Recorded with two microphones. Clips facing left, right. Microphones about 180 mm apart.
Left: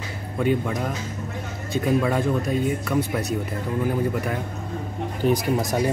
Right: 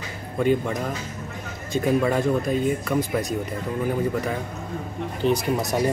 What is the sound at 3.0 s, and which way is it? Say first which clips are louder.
Speech: even; 65° left (ahead or behind).